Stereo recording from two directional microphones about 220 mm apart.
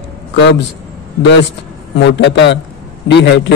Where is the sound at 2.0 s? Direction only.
50° left (ahead or behind).